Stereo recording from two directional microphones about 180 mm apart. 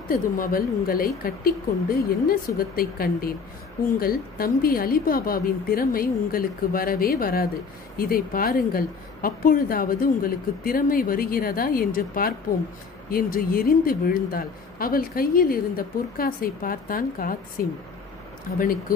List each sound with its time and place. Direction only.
0.1 s a woman's voice: 55° left (ahead or behind)